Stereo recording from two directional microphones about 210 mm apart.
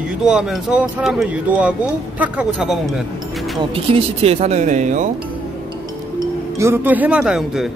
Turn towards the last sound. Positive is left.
turn(degrees=0)  # may be behind; listen again after turning